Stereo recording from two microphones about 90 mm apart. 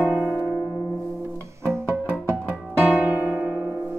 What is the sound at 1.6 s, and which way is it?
Music, 30° right (ahead or behind).